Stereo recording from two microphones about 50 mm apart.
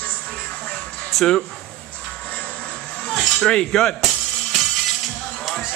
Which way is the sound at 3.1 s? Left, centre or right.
Centre.